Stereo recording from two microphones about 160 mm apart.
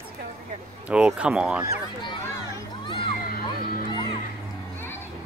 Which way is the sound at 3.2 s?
65° left (ahead or behind).